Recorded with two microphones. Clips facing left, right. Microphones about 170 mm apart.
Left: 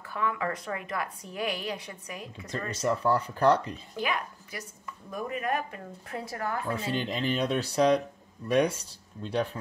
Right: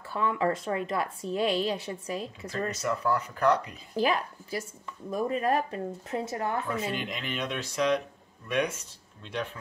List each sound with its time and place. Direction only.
0.1 s a woman's voice: 30° right (ahead or behind)
2.8 s speech: 30° left (ahead or behind)
3.9 s a woman's voice: 35° right (ahead or behind)
6.9 s speech: 30° left (ahead or behind)